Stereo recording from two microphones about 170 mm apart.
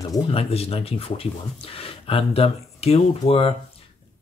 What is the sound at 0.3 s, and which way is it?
Speech, 35° left (ahead or behind).